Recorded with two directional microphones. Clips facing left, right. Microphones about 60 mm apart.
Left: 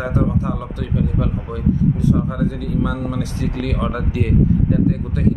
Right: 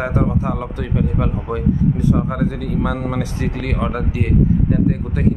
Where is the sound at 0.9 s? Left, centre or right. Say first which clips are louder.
Even; right.